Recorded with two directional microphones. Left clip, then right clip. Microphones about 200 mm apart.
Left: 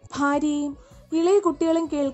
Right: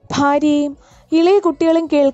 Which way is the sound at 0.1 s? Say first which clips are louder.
Right 9 dB; 35° right (ahead or behind).